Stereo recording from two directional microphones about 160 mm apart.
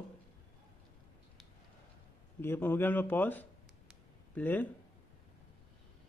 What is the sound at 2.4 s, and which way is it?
Speech, 15° left (ahead or behind).